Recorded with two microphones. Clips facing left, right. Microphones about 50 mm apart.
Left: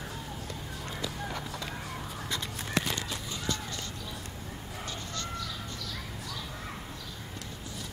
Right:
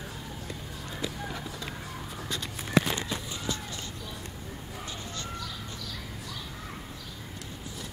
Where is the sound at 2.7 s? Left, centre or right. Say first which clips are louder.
Right 6 dB; right.